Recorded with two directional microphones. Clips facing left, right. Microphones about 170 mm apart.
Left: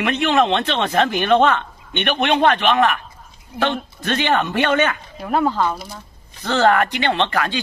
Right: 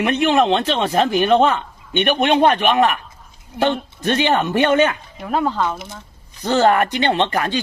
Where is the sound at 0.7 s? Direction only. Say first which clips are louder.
Right 2 dB; 10° right (ahead or behind).